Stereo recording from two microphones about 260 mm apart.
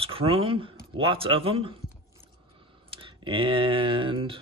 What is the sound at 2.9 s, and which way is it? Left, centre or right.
Speech, centre.